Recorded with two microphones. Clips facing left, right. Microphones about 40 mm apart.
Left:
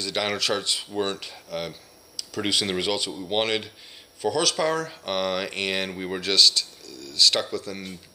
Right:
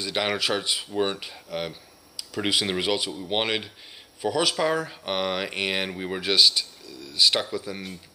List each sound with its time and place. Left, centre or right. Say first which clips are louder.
0.0 s speech: even; centre